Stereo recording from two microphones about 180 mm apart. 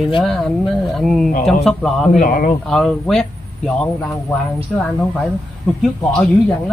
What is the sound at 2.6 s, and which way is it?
A man's voice, 5° left (ahead or behind).